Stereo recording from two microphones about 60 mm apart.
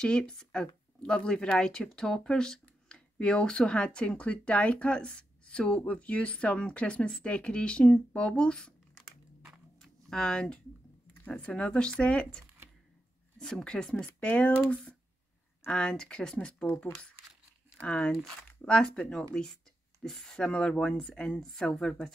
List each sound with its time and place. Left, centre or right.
0.0 s speech: centre
9.8 s a sound: centre
11.2 s speech: left
16.6 s speech: left
17.8 s speech: centre